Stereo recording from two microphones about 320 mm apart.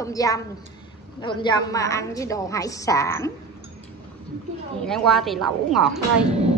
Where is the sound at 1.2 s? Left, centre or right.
Centre.